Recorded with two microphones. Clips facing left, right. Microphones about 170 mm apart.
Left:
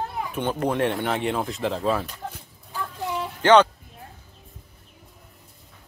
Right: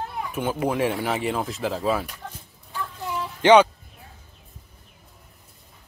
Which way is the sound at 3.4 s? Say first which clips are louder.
Right 1 dB; 15° right (ahead or behind).